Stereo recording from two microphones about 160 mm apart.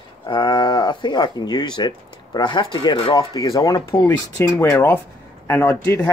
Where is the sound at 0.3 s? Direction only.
25° left (ahead or behind).